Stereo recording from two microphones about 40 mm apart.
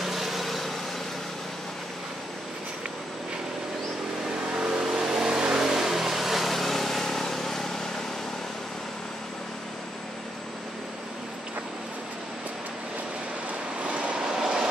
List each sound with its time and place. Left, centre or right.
0.0 s vehicle: centre
4.6 s vehicle: centre
13.8 s vehicle: right
14.1 s train: centre